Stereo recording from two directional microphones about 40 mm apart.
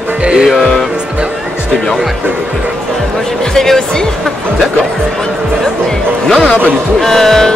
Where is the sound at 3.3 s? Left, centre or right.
Centre.